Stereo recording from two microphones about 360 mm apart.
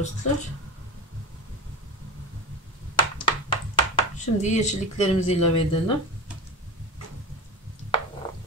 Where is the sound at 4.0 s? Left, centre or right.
Centre.